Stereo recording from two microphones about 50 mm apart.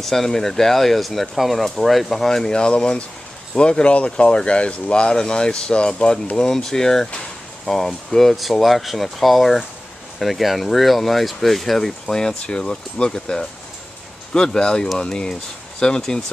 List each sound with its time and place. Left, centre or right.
0.0 s speech: centre